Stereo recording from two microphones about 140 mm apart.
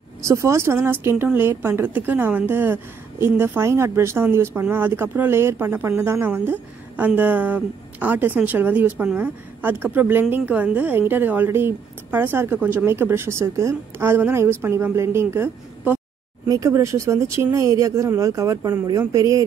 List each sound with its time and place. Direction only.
0.3 s speech: 20° right (ahead or behind)